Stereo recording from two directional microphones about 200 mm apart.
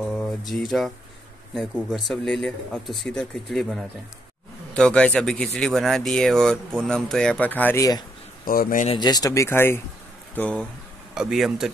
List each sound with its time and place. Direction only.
0.0 s mantra: centre (ahead or behind)
0.5 s speech: centre (ahead or behind)
8.5 s speech: 45° left (ahead or behind)
8.8 s speech: 20° left (ahead or behind); by 11.7 s centre (ahead or behind)